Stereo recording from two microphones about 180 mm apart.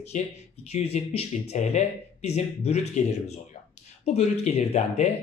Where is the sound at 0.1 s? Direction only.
40° left (ahead or behind).